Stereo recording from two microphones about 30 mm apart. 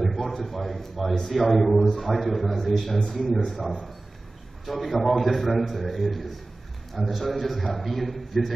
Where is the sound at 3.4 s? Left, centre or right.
Centre.